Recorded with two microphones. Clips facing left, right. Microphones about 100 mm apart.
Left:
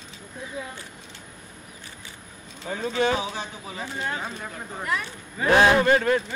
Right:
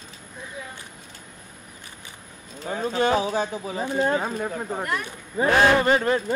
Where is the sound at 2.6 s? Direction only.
45° right (ahead or behind).